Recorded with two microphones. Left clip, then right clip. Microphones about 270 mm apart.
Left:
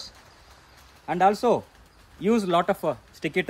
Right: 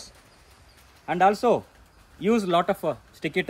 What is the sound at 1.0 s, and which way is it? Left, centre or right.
A man's voice, centre.